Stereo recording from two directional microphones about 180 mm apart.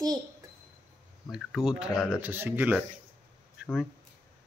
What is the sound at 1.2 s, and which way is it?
Speech, centre (ahead or behind).